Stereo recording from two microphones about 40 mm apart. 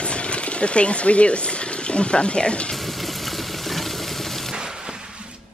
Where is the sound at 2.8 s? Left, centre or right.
Centre.